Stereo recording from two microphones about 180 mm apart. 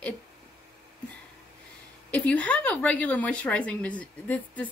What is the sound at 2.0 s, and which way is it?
Speech, 10° left (ahead or behind).